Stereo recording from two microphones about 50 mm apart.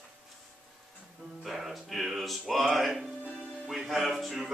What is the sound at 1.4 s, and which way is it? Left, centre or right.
Music, centre.